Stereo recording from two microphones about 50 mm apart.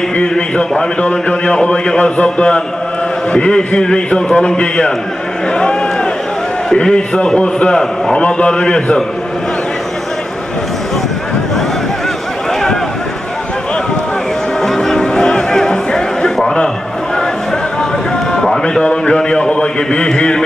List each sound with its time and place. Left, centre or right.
0.6 s a man's voice: left
14.6 s music: centre
18.3 s a man's voice: centre